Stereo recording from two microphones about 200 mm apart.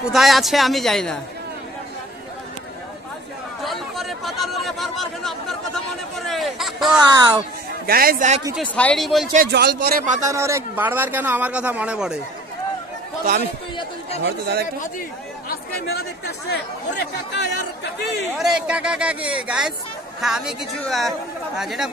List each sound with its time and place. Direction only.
0.1 s a man's voice: centre (ahead or behind)
3.6 s chatter: centre (ahead or behind)
6.1 s a man's voice: centre (ahead or behind)
7.8 s speech: 45° right (ahead or behind)
8.5 s a man's voice: 5° left (ahead or behind)
9.5 s speech: 60° right (ahead or behind); by 10.2 s 45° right (ahead or behind)
10.2 s a man's voice: 15° right (ahead or behind)
14.2 s speech: 55° right (ahead or behind)
14.8 s speech: 45° left (ahead or behind)
18.4 s a man's voice: 5° right (ahead or behind)